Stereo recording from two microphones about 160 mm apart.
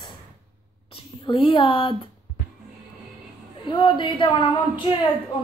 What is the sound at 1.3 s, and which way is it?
Speech, 35° left (ahead or behind).